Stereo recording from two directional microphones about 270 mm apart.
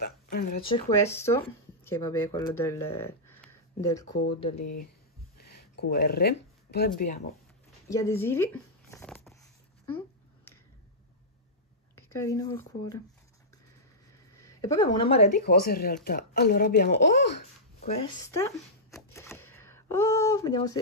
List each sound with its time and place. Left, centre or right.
0.0 s speech: left
0.7 s speech: centre
4.6 s speech: left
5.4 s speech: left
7.9 s speech: centre
8.9 s a sound: centre
11.9 s speech: centre
14.3 s a sound: centre
15.2 s speech: left
17.8 s speech: centre
18.9 s a sound: centre